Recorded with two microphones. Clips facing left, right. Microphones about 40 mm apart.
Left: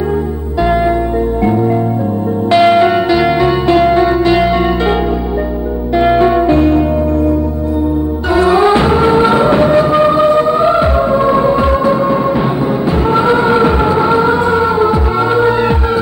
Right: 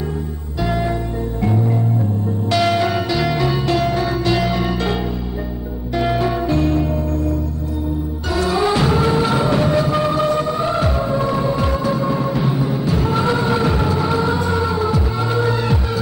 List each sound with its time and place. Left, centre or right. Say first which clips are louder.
2.5 s music: left 9 dB; left
5.9 s music: left 9 dB; left
8.4 s music: left 8 dB; left